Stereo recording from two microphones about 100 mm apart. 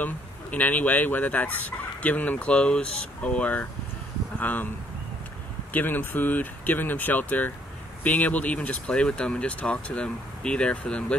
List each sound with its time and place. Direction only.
0.0 s speech: 15° left (ahead or behind)
5.7 s speech: 20° left (ahead or behind)